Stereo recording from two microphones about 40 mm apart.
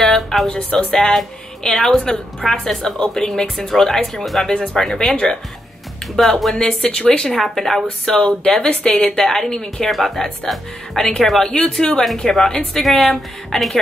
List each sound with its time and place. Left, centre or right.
0.0 s music: centre
0.5 s speech: left
5.1 s speech: left
6.1 s speech: centre
6.5 s speech: left; by 10.2 s centre
11.2 s speech: centre